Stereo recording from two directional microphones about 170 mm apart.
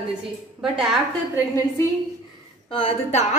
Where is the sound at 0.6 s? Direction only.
5° right (ahead or behind).